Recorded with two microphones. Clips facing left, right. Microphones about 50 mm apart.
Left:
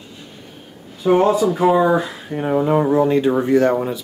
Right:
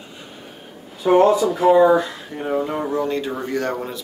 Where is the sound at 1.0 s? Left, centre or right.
Centre.